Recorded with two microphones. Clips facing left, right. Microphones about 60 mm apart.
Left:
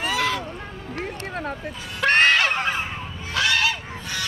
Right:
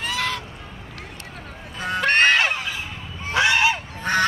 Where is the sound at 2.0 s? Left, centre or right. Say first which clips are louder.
Even; centre.